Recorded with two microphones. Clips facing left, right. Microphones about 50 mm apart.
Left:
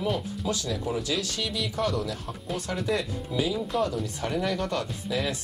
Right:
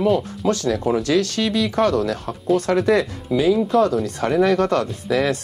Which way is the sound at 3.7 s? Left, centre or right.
Right.